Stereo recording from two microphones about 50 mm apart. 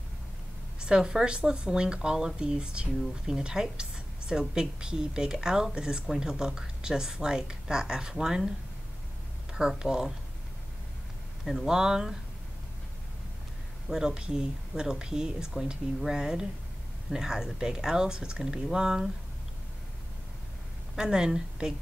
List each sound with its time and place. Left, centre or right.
0.7 s a woman's voice: centre
9.5 s a woman's voice: centre
11.4 s a woman's voice: centre
13.8 s a woman's voice: centre
20.9 s a woman's voice: centre